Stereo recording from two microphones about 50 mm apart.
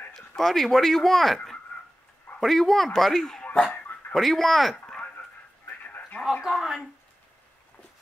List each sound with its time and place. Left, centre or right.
0.4 s speech: centre
5.9 s a sound: left
6.4 s speech: centre